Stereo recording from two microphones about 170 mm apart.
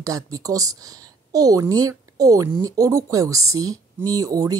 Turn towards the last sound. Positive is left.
turn(degrees=-20)  # may be behind; listen again after turning